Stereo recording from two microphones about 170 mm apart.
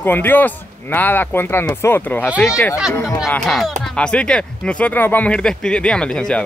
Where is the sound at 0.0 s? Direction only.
10° left (ahead or behind).